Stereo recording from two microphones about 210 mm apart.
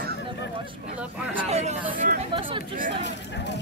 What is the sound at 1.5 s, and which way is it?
Speech, 30° right (ahead or behind).